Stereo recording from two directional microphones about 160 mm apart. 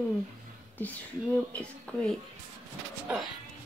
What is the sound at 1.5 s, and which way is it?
Speech, 5° left (ahead or behind).